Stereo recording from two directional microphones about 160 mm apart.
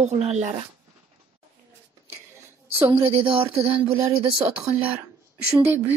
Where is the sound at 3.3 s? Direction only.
35° right (ahead or behind).